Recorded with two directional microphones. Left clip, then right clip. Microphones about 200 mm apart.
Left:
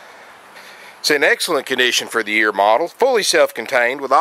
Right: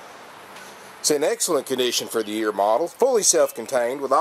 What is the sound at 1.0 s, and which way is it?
Speech, centre (ahead or behind).